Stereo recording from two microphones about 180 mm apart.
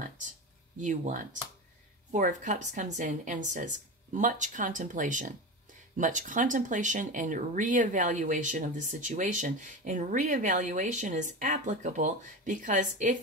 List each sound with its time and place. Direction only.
0.7 s speech: 45° right (ahead or behind)